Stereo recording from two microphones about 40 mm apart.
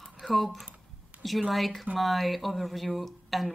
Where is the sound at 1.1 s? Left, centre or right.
Right.